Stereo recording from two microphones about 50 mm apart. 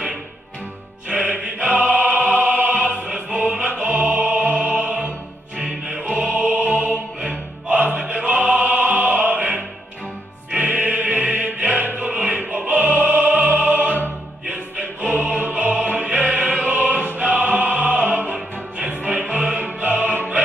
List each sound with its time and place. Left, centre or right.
1.0 s music: right
6.0 s music: right